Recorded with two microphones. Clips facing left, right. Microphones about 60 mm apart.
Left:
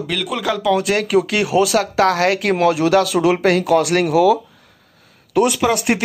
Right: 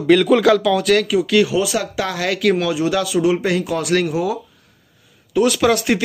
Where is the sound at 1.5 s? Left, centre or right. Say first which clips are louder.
Left 5 dB; left.